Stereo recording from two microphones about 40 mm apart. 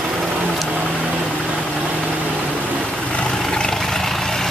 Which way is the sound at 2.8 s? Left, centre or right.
Left.